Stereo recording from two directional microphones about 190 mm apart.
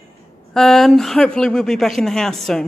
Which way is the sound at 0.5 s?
Centre (ahead or behind).